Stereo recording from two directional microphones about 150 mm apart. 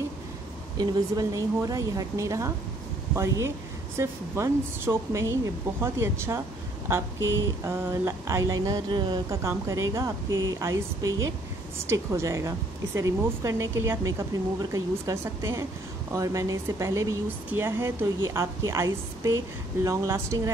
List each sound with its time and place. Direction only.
0.7 s speech: 25° right (ahead or behind)